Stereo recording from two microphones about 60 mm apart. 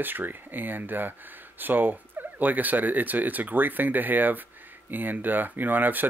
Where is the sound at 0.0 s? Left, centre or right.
Right.